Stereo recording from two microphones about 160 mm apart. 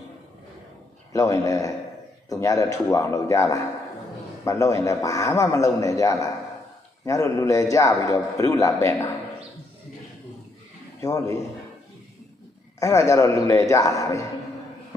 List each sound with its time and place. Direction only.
1.1 s a man's voice: 20° left (ahead or behind)
11.0 s a man's voice: 20° left (ahead or behind)
12.7 s a man's voice: 20° left (ahead or behind)